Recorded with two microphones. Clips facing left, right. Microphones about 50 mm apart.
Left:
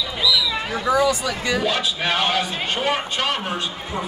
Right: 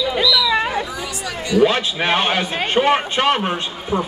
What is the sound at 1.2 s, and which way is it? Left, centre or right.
A man's voice, right.